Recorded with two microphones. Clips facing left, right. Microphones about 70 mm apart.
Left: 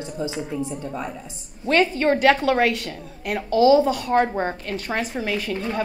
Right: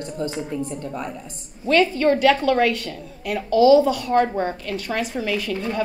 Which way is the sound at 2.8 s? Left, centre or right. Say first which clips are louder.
Right 1 dB; left.